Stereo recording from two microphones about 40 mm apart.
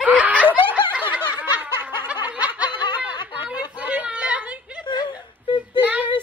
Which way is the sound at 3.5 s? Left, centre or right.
Right.